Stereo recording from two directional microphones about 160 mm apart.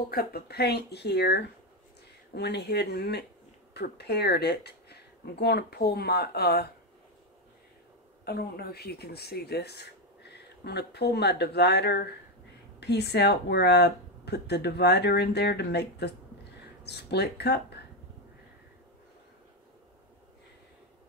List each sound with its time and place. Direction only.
0.1 s speech: 70° left (ahead or behind)
8.3 s speech: 80° left